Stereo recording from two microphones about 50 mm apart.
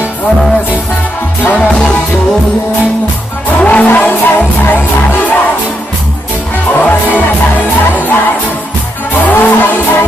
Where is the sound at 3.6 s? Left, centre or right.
Left.